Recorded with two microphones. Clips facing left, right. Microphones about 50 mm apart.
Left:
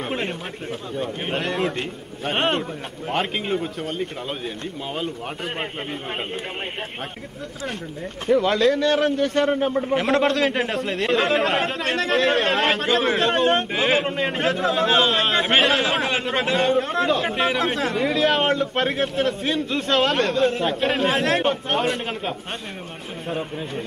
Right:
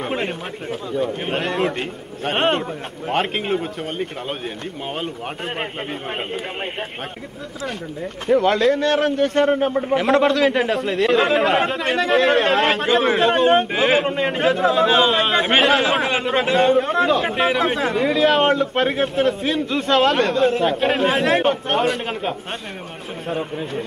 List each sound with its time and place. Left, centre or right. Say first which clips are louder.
0.0 s speech: right 3 dB; centre
1.3 s a man's voice: even; centre
8.3 s a man's voice: right 2 dB; centre
10.0 s a man's voice: right 5 dB; centre